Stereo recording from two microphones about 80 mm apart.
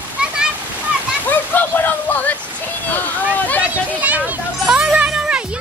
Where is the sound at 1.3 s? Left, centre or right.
Left.